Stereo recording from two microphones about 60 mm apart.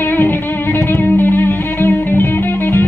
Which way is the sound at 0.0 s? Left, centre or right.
Left.